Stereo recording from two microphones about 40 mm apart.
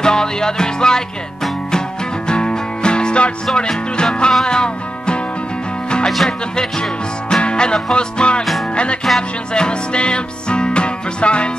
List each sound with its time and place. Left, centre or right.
0.0 s music: centre
2.2 s music: left
6.0 s speech: centre
6.5 s music: left
9.1 s music: centre
9.5 s music: left